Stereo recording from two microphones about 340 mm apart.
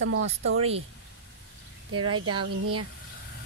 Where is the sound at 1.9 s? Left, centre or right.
Right.